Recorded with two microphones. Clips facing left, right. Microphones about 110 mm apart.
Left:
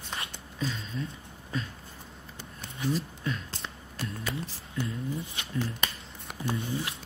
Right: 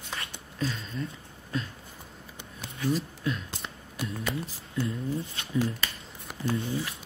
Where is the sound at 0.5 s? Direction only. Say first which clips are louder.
Right 1 dB; centre (ahead or behind).